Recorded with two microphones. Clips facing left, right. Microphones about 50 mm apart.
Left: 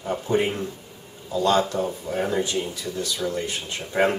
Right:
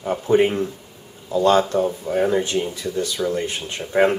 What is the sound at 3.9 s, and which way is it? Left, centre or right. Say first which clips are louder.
Speech: right 4 dB; right.